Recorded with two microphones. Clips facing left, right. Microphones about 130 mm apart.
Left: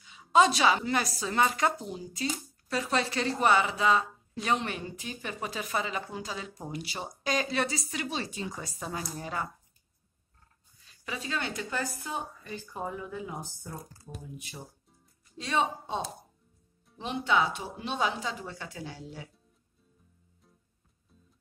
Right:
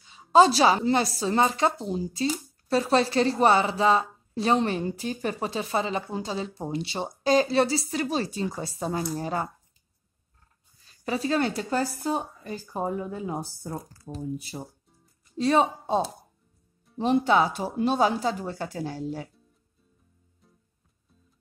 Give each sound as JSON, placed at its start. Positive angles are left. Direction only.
{"t": 0.0, "sound": "a woman's voice", "side_deg": -35}
{"t": 11.1, "sound": "a woman's voice", "side_deg": -40}
{"t": 17.0, "sound": "a woman's voice", "side_deg": -40}